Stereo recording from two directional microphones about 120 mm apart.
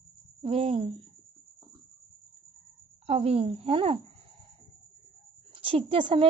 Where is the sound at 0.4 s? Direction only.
55° right (ahead or behind).